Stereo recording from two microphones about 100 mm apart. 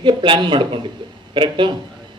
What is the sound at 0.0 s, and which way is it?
A man's voice, 55° right (ahead or behind).